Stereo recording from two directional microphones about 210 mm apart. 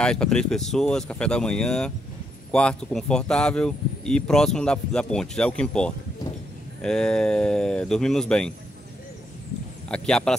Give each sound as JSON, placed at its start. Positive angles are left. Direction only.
{"t": 0.0, "sound": "speech", "side_deg": 5}
{"t": 9.8, "sound": "speech", "side_deg": 5}